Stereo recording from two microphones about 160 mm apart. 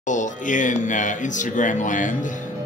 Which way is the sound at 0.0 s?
50° left (ahead or behind).